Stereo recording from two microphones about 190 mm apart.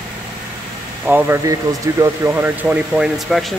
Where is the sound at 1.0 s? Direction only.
10° right (ahead or behind).